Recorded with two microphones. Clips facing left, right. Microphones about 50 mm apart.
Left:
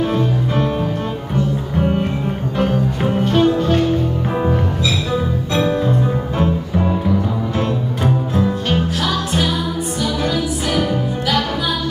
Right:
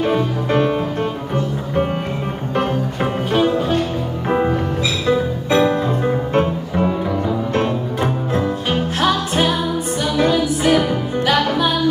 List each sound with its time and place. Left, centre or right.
0.0 s music: right
3.0 s music: centre
7.6 s music: right